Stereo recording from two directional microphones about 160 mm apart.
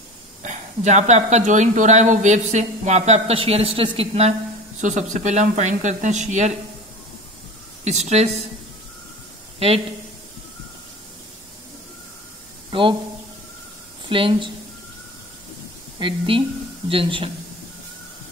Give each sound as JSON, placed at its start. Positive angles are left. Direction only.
{"t": 0.4, "sound": "speech", "side_deg": -45}
{"t": 4.8, "sound": "speech", "side_deg": -50}
{"t": 7.8, "sound": "speech", "side_deg": -45}
{"t": 14.0, "sound": "a woman's voice", "side_deg": -30}
{"t": 16.0, "sound": "speech", "side_deg": -30}